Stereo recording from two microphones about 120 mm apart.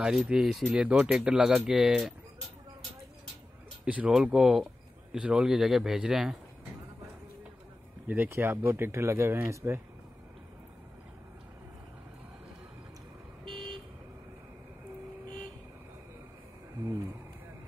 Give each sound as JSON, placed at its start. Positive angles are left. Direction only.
{"t": 0.0, "sound": "speech", "side_deg": -5}
{"t": 3.8, "sound": "speech", "side_deg": -10}
{"t": 8.1, "sound": "speech", "side_deg": -15}
{"t": 13.5, "sound": "vehicle", "side_deg": -45}